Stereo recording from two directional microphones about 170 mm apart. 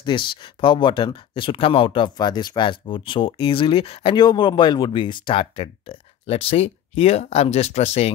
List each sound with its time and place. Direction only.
0.0 s speech: 30° left (ahead or behind)